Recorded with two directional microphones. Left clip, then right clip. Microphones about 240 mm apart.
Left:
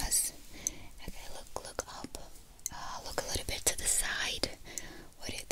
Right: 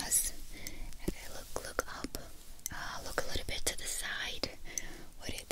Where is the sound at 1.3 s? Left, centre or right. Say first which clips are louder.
Right 1 dB; centre.